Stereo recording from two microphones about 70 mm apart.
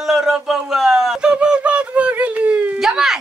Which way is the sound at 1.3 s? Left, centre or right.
Centre.